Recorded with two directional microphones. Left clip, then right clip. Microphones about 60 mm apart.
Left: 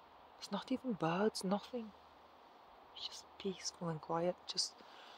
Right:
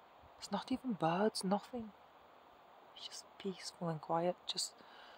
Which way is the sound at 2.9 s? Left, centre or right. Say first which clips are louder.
Left 3 dB; right.